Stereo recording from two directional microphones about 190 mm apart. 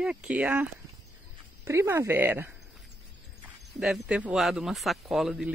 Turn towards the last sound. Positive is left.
turn(degrees=0)  # may be behind; listen again after turning